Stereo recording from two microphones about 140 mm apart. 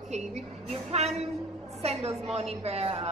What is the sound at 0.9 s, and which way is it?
A woman's voice, 50° right (ahead or behind).